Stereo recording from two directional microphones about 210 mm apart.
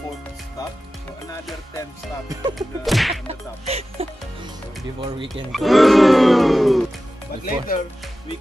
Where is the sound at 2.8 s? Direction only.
Centre (ahead or behind).